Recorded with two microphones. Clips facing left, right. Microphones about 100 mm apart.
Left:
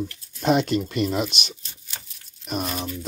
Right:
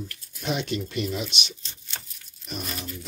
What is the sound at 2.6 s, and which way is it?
Speech, 70° left (ahead or behind).